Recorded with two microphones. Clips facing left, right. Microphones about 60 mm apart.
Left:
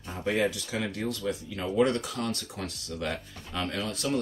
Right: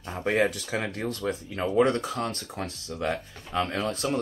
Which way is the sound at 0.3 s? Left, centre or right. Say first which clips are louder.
Right 3 dB; right.